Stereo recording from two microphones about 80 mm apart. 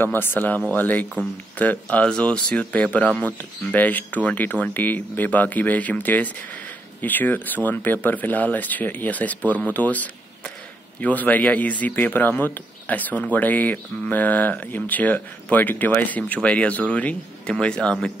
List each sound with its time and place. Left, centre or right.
0.0 s speech: left